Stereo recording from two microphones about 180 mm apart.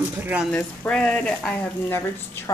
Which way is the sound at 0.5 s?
5° left (ahead or behind).